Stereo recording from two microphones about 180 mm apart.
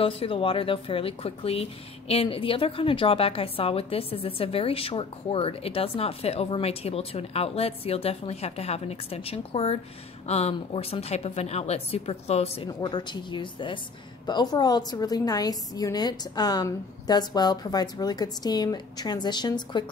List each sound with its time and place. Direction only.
0.0 s a woman's voice: 30° left (ahead or behind)